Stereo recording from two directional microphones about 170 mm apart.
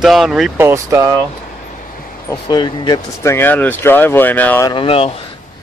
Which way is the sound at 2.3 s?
25° left (ahead or behind).